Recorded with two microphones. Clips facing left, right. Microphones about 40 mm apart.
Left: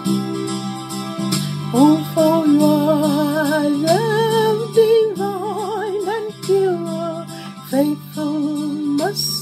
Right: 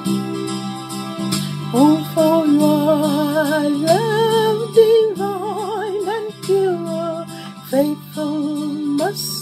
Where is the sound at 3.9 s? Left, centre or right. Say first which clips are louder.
Right 2 dB; centre.